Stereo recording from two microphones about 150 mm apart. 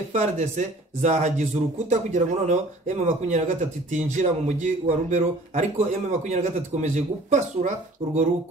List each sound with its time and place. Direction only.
0.1 s speech: 50° right (ahead or behind)